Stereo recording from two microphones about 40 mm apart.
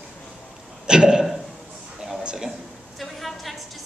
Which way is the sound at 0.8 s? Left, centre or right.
Right.